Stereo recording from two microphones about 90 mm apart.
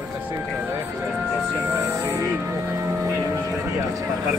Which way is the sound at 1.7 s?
30° right (ahead or behind).